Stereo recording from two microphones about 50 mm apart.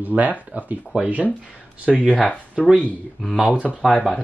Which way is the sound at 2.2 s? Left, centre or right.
Left.